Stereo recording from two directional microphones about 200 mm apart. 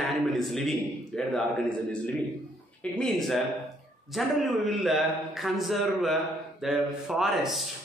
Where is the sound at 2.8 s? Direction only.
5° left (ahead or behind).